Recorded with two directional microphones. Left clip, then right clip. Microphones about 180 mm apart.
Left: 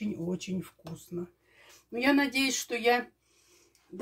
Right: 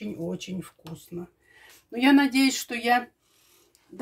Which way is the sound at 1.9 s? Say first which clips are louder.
Right 6 dB; 45° right (ahead or behind).